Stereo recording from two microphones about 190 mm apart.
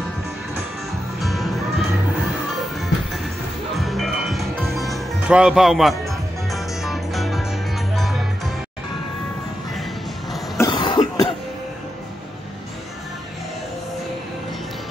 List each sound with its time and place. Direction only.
1.2 s music: centre (ahead or behind)
3.7 s music: centre (ahead or behind)
10.6 s cough: 25° left (ahead or behind)